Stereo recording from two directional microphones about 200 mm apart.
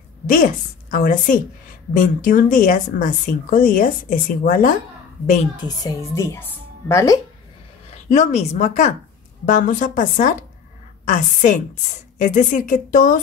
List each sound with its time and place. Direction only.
0.3 s a woman's voice: 45° left (ahead or behind)
5.8 s speech: 15° left (ahead or behind)
7.9 s a woman's voice: 35° left (ahead or behind)